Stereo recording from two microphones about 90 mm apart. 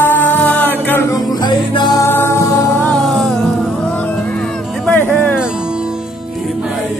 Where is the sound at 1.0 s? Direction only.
45° left (ahead or behind).